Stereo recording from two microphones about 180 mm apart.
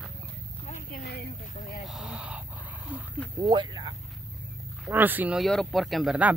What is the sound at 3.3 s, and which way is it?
Speech, 25° right (ahead or behind).